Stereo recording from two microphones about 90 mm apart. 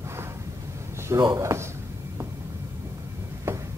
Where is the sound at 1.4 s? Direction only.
35° right (ahead or behind).